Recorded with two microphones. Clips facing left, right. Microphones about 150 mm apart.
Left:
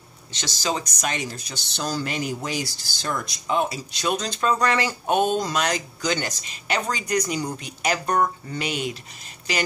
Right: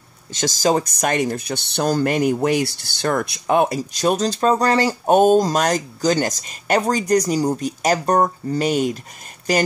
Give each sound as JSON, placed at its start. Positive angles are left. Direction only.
{"t": 0.3, "sound": "speech", "side_deg": -45}